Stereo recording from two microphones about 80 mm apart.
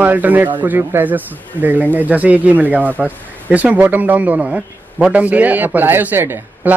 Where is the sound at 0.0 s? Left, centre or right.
Right.